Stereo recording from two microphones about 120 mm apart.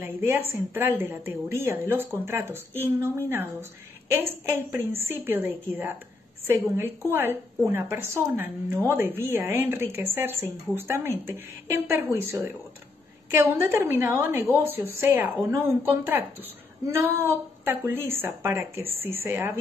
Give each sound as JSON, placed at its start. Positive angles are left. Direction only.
{"t": 0.0, "sound": "a woman's voice", "side_deg": -20}